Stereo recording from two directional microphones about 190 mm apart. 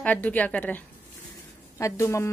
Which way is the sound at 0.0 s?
10° left (ahead or behind).